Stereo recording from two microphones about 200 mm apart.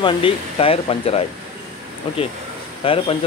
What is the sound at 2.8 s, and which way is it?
Speech, 25° left (ahead or behind).